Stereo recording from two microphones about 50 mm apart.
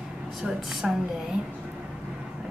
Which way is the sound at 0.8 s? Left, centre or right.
Centre.